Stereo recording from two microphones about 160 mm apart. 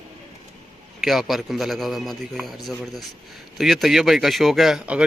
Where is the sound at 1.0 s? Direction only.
Centre (ahead or behind).